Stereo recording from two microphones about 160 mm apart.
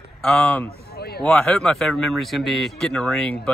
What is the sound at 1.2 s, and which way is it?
A man's voice, 5° left (ahead or behind).